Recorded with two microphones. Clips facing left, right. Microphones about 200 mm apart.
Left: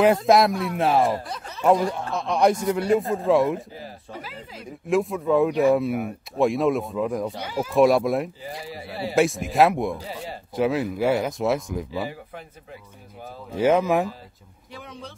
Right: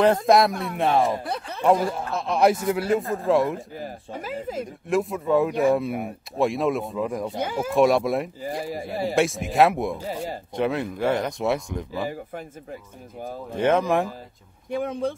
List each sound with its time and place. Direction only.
0.0 s speech: 5° left (ahead or behind)
1.2 s speech: 60° right (ahead or behind)
1.6 s speech: centre (ahead or behind)
3.7 s speech: 50° right (ahead or behind)
4.6 s speech: centre (ahead or behind)
8.4 s speech: 45° right (ahead or behind)
9.1 s speech: centre (ahead or behind)
13.5 s speech: 5° left (ahead or behind)
14.7 s speech: 50° right (ahead or behind)